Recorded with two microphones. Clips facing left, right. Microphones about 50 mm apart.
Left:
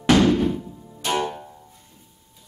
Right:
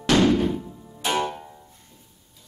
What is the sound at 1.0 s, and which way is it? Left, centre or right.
Music, centre.